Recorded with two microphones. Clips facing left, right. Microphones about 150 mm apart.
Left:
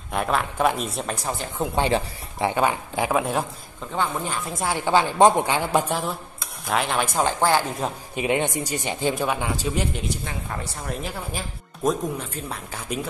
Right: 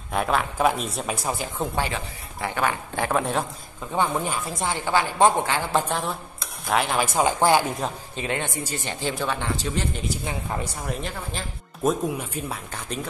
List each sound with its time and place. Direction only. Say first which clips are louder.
0.1 s speech: even; centre (ahead or behind)
1.8 s speech: left 6 dB; 25° left (ahead or behind)
3.0 s speech: left 1 dB; 5° left (ahead or behind)
3.9 s speech: right 2 dB; 15° right (ahead or behind)
4.5 s speech: left 1 dB; centre (ahead or behind)
4.7 s a man's voice: left 4 dB; 15° left (ahead or behind); by 7.2 s centre (ahead or behind)
7.2 s speech: right 2 dB; 15° right (ahead or behind)
7.8 s speech: left 1 dB; 5° left (ahead or behind)
8.2 s a man's voice: left 5 dB; 15° left (ahead or behind); by 12.5 s 5° right (ahead or behind)